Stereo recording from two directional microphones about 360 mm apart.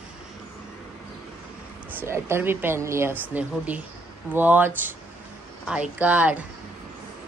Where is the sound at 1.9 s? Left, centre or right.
Centre.